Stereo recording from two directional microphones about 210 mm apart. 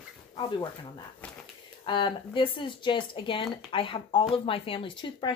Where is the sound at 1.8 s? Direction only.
25° left (ahead or behind).